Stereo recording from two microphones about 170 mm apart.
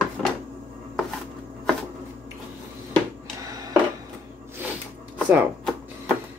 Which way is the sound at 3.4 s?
20° right (ahead or behind).